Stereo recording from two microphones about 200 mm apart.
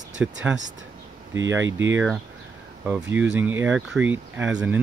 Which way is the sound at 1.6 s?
70° right (ahead or behind).